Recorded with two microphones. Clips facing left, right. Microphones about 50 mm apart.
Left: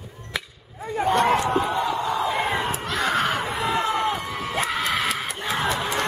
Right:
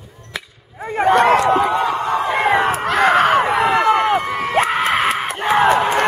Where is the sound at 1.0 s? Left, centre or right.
Right.